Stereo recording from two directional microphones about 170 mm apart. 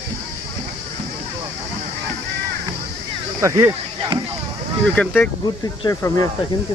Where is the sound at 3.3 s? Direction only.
15° right (ahead or behind).